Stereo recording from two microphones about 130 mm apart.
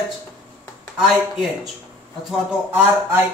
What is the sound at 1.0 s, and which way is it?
A man's voice, 5° right (ahead or behind).